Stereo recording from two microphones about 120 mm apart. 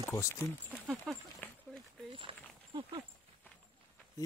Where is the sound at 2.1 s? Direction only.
45° right (ahead or behind).